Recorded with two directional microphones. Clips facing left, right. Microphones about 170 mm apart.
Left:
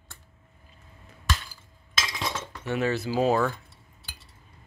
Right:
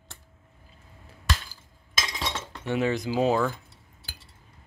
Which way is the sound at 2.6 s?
15° right (ahead or behind).